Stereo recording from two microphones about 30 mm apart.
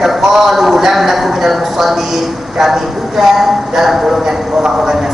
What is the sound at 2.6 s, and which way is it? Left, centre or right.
A man's voice, centre.